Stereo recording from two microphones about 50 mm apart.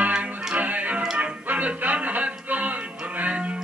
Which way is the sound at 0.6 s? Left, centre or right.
Right.